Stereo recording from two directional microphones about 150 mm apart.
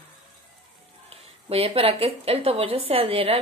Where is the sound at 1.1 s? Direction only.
40° right (ahead or behind).